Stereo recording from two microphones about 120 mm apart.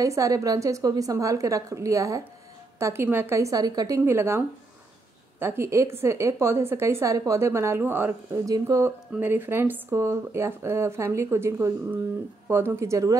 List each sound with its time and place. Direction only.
0.0 s speech: 30° right (ahead or behind)
8.5 s speech: 30° right (ahead or behind)